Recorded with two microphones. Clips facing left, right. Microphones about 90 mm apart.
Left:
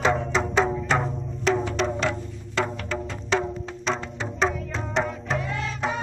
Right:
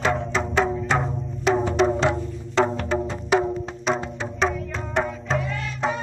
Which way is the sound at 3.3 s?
15° right (ahead or behind).